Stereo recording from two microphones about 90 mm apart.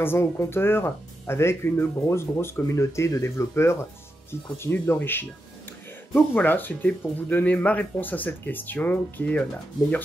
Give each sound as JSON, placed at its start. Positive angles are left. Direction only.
{"t": 0.0, "sound": "speech", "side_deg": 30}